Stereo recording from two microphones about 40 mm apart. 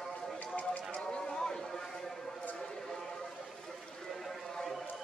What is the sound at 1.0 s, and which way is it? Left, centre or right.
Chatter, centre.